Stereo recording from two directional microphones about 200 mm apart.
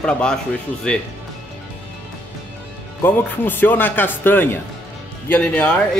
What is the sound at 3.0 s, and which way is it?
Speech, 10° left (ahead or behind).